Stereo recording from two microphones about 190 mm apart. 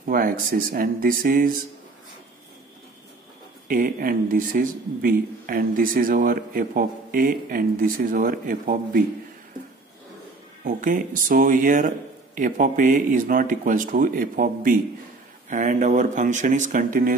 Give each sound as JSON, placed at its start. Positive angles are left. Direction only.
{"t": 0.0, "sound": "a man's voice", "side_deg": -50}
{"t": 3.6, "sound": "a man's voice", "side_deg": -45}
{"t": 10.6, "sound": "a man's voice", "side_deg": -45}